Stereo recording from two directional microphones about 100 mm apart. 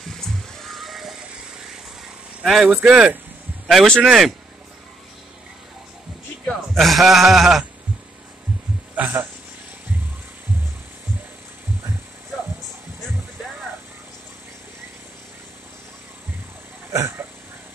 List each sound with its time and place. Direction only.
0.0 s vehicle: 5° left (ahead or behind)
2.4 s speech: 5° right (ahead or behind)
3.6 s speech: 5° left (ahead or behind)
6.7 s speech: centre (ahead or behind)
8.9 s a man's voice: 20° right (ahead or behind)
16.9 s hiccup: 30° right (ahead or behind)